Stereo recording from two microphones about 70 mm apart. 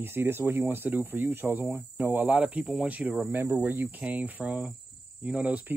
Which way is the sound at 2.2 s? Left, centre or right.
Centre.